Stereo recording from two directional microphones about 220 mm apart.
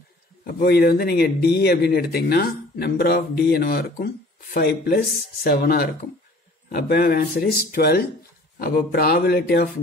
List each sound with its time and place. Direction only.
0.5 s speech: 45° left (ahead or behind)